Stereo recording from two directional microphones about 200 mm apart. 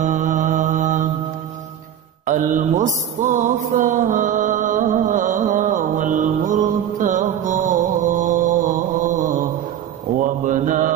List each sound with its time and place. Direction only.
0.0 s mantra: 40° right (ahead or behind)
2.2 s mantra: 40° right (ahead or behind)